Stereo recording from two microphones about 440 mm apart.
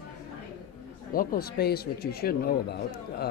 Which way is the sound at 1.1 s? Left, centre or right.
Left.